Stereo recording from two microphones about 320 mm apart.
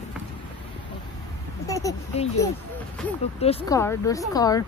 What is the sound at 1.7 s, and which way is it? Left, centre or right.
Speech, centre.